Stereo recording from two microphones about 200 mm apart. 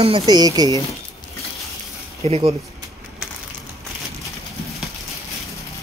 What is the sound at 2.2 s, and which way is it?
Speech, 30° right (ahead or behind).